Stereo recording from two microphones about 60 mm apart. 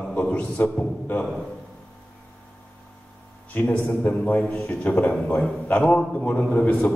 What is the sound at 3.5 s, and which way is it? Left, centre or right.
A man's voice, left.